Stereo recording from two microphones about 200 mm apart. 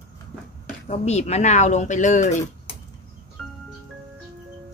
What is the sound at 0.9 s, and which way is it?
Speech, 35° left (ahead or behind).